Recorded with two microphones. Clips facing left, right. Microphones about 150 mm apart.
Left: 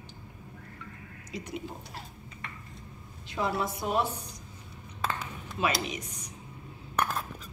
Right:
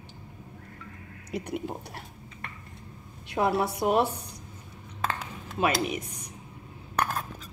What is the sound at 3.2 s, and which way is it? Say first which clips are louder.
Speech: right 5 dB; 65° right (ahead or behind).